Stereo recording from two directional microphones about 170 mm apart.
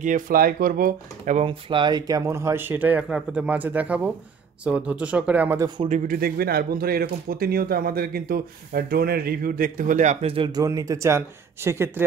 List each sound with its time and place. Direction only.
0.0 s speech: 55° right (ahead or behind)
1.4 s speech: 30° right (ahead or behind); by 5.7 s 10° right (ahead or behind)
5.8 s speech: 45° right (ahead or behind)
10.2 s speech: 30° right (ahead or behind); by 12.0 s 15° right (ahead or behind)